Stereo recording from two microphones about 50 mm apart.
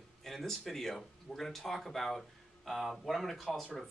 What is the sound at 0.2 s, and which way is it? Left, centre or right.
Speech, centre.